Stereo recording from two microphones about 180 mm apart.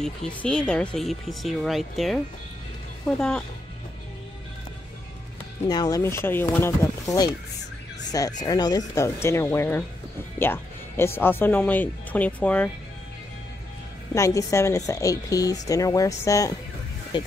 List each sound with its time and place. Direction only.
0.0 s speech: 5° left (ahead or behind)
3.2 s speech: 5° left (ahead or behind)
5.7 s speech: 20° left (ahead or behind)
14.1 s speech: 15° left (ahead or behind)